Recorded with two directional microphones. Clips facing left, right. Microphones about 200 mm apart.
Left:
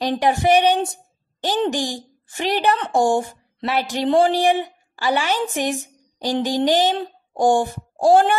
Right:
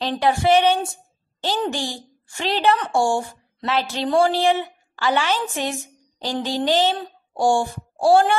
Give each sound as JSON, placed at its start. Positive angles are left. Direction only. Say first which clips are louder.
{"t": 0.0, "sound": "a woman's voice", "louder": "left 1 dB", "side_deg": 15}